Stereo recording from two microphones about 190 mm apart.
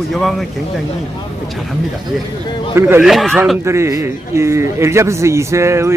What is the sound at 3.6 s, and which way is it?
A man's voice, 15° right (ahead or behind).